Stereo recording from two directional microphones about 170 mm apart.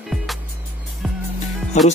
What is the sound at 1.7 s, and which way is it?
Speech, 40° left (ahead or behind).